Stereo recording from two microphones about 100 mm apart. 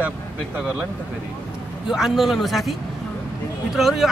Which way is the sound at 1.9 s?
5° right (ahead or behind).